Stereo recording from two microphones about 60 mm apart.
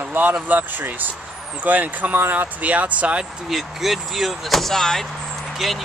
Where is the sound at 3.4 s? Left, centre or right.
Centre.